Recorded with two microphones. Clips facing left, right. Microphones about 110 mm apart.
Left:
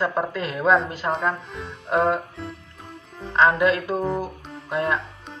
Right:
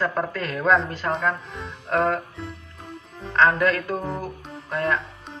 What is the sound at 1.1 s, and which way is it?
Speech, centre (ahead or behind).